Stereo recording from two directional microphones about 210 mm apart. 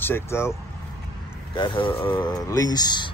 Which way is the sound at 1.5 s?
25° left (ahead or behind).